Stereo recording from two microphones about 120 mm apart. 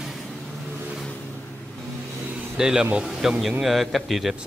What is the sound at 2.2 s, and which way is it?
A man's voice, 5° right (ahead or behind).